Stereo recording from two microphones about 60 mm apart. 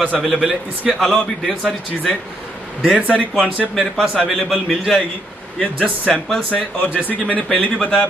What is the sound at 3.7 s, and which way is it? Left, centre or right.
A man's voice, centre.